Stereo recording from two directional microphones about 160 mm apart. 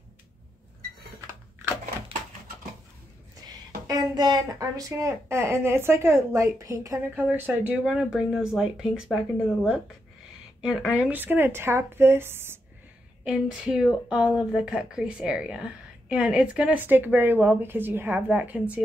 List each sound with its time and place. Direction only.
3.8 s a woman's voice: 25° right (ahead or behind); by 9.2 s 5° right (ahead or behind)
10.6 s a woman's voice: 5° right (ahead or behind)